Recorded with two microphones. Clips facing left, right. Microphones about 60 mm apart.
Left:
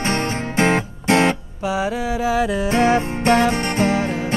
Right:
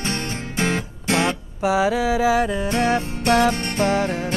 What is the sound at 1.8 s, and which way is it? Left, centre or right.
Mantra, right.